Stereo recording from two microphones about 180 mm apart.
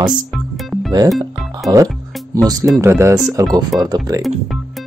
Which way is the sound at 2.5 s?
20° right (ahead or behind).